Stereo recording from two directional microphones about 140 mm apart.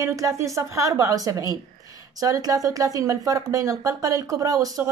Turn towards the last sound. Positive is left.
turn(degrees=-25)  # may be behind; listen again after turning